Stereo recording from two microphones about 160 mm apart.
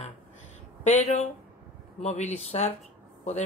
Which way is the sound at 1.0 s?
45° left (ahead or behind).